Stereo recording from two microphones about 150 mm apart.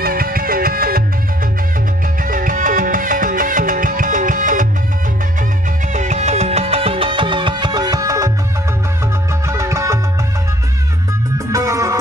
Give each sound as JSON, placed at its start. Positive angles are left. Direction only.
{"t": 0.0, "sound": "music", "side_deg": -80}
{"t": 2.2, "sound": "music", "side_deg": -65}
{"t": 5.9, "sound": "music", "side_deg": -50}
{"t": 9.5, "sound": "music", "side_deg": -20}
{"t": 11.3, "sound": "music", "side_deg": -20}